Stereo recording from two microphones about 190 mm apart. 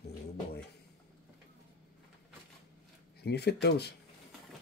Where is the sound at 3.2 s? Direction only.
60° left (ahead or behind).